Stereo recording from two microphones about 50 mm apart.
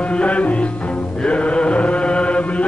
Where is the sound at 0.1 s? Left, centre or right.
Left.